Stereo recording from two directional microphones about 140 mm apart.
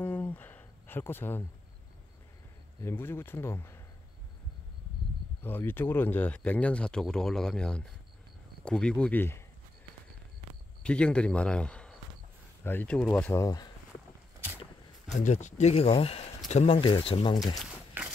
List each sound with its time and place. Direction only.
0.0 s a sound: 15° left (ahead or behind)
2.8 s speech: 15° left (ahead or behind)
5.4 s speech: 15° left (ahead or behind)
10.8 s speech: 5° left (ahead or behind)
15.1 s speech: 60° left (ahead or behind); by 17.6 s 35° left (ahead or behind)